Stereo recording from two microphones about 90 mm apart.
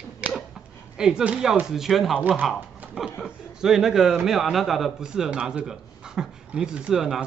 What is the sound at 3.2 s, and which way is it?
A man's voice, 5° right (ahead or behind).